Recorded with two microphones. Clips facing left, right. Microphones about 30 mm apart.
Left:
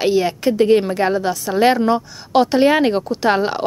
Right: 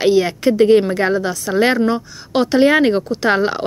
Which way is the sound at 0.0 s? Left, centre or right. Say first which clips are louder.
Right 2 dB; centre.